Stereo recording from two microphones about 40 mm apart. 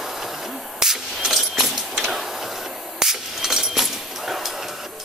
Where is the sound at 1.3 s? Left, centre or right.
Centre.